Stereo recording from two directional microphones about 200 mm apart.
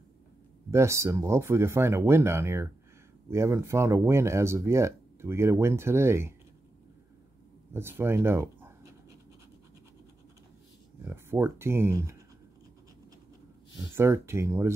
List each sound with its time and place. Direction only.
0.7 s speech: 15° right (ahead or behind)
7.7 s speech: 10° right (ahead or behind)
11.1 s speech: 10° right (ahead or behind)
13.7 s speech: 15° right (ahead or behind)